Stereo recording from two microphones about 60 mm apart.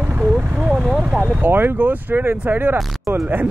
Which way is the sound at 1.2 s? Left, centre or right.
Right.